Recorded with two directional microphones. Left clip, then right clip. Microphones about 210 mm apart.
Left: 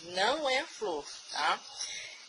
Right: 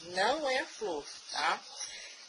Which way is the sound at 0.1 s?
15° left (ahead or behind).